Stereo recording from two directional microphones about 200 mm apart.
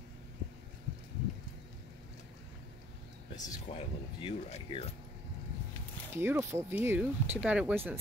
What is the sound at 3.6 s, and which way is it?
Speech, 30° left (ahead or behind).